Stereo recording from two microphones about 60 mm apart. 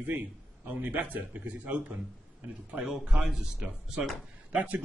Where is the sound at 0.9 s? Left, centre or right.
Right.